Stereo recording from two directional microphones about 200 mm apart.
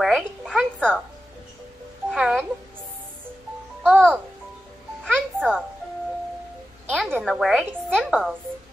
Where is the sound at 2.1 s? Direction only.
Centre (ahead or behind).